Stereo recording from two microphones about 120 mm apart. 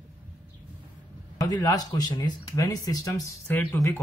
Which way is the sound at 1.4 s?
30° left (ahead or behind).